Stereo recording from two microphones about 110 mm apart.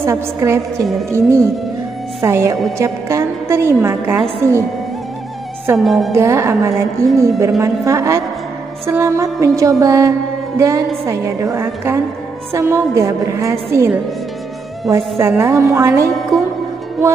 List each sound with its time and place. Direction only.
0.0 s a woman's voice: 25° right (ahead or behind)
5.8 s a woman's voice: centre (ahead or behind)
6.1 s a woman's voice: 25° right (ahead or behind)
16.2 s music: centre (ahead or behind)